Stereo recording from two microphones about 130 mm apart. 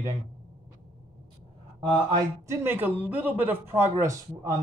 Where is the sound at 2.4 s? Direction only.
15° right (ahead or behind).